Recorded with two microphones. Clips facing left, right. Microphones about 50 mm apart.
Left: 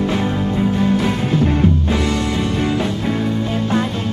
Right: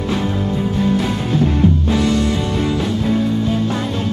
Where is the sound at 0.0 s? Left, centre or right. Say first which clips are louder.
Left 1 dB; left.